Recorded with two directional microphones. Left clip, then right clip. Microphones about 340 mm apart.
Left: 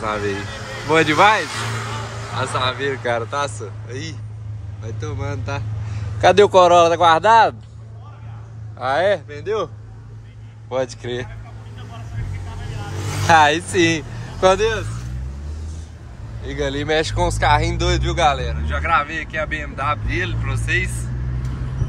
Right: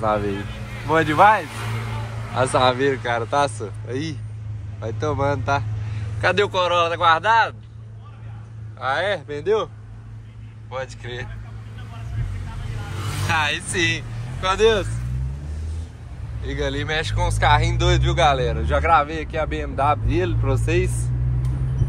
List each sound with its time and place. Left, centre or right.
0.8 s speech: centre
1.5 s vehicle: left
2.3 s speech: centre
6.2 s speech: centre
8.7 s speech: centre
10.7 s speech: centre
13.4 s speech: centre
14.6 s speech: centre
16.4 s speech: centre